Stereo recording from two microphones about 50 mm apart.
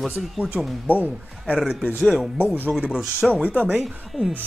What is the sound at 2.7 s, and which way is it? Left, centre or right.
Speech, centre.